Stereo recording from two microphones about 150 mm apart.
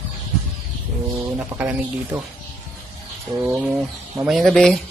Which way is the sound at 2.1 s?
20° right (ahead or behind).